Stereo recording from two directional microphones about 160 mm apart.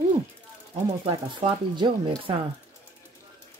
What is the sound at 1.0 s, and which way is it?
Speech, 35° right (ahead or behind).